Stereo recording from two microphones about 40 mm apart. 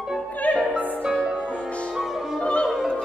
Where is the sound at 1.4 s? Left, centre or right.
Left.